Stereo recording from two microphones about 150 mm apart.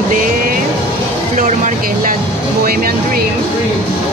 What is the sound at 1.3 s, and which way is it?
Music, 65° right (ahead or behind).